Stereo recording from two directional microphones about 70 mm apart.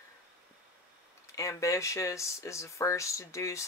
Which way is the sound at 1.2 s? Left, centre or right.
Left.